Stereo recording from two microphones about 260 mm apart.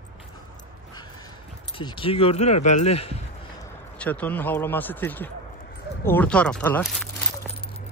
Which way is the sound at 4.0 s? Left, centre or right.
Centre.